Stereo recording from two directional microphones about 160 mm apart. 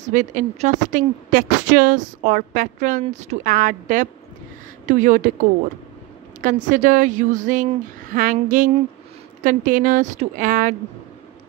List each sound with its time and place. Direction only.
0.0 s a woman's voice: 50° right (ahead or behind)